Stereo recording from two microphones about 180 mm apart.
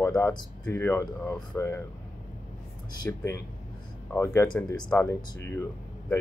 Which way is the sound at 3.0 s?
15° left (ahead or behind).